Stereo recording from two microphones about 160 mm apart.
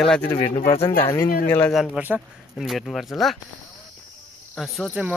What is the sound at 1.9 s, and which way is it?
Speech, 10° right (ahead or behind).